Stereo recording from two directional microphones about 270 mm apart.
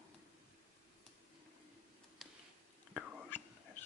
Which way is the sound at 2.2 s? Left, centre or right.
Centre.